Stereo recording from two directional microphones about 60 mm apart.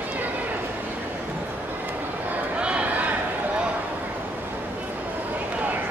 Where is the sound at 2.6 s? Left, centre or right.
Centre.